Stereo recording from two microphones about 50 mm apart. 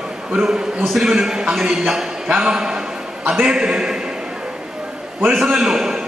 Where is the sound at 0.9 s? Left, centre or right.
Centre.